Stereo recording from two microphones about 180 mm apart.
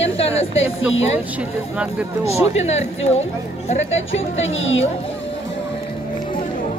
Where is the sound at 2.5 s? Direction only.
40° left (ahead or behind).